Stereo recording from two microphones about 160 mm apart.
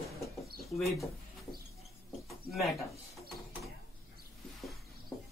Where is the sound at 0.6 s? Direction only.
Centre (ahead or behind).